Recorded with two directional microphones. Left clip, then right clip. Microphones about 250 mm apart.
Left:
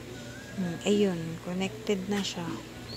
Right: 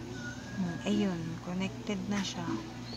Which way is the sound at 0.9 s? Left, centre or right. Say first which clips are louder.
Left 8 dB; centre.